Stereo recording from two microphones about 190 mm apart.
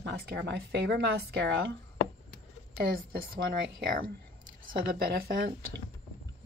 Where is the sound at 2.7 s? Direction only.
50° right (ahead or behind).